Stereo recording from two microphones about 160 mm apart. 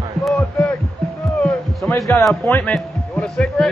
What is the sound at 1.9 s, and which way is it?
Speech, 20° left (ahead or behind).